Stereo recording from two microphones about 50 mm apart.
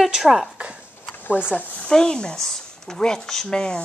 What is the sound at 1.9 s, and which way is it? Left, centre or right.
Speech, centre.